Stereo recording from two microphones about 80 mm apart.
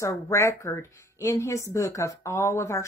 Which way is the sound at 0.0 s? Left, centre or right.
Left.